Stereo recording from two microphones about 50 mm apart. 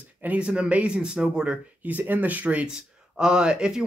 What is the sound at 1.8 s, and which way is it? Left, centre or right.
Speech, right.